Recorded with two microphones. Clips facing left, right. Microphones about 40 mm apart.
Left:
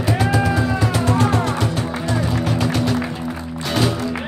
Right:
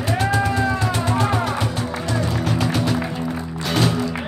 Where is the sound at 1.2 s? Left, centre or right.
Centre.